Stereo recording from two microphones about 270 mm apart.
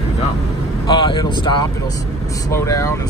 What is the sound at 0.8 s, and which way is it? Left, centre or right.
Speech, centre.